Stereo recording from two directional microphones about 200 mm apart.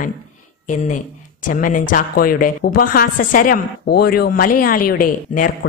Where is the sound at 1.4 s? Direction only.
40° left (ahead or behind).